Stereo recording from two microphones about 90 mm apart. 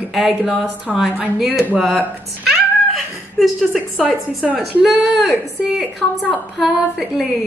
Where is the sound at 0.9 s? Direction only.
15° right (ahead or behind).